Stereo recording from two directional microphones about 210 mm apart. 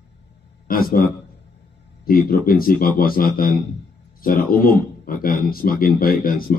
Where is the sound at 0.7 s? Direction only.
45° left (ahead or behind).